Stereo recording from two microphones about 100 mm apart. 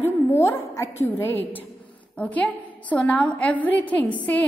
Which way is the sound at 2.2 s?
15° left (ahead or behind).